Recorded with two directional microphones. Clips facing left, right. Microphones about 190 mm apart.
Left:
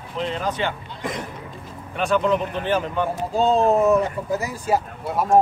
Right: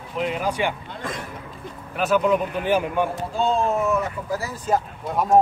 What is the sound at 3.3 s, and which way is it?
Speech, 40° left (ahead or behind).